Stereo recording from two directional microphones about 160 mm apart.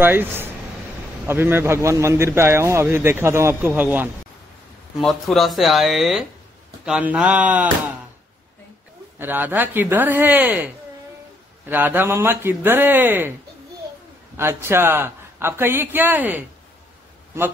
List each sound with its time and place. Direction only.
0.0 s a man's voice: 15° right (ahead or behind)
5.0 s a man's voice: centre (ahead or behind)
9.2 s a man's voice: 10° right (ahead or behind)
11.7 s a man's voice: 10° right (ahead or behind)
14.3 s a man's voice: 15° right (ahead or behind)